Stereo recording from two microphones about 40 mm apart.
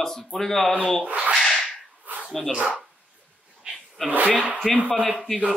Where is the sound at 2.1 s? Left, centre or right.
Right.